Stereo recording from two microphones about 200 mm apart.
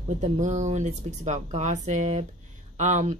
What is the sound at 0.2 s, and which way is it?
A woman's voice, 35° right (ahead or behind).